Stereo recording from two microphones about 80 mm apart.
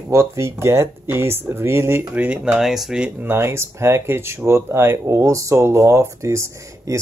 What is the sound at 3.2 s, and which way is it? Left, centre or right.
Speech, right.